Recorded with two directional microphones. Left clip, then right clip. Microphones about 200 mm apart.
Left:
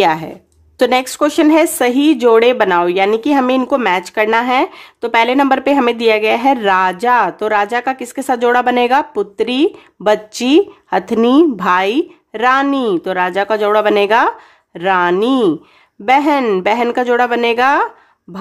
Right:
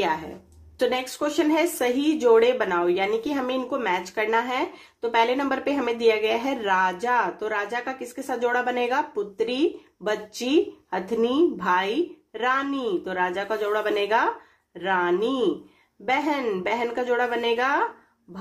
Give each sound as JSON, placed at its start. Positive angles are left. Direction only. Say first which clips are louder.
{"t": 0.7, "sound": "speech", "louder": "left 12 dB", "side_deg": 50}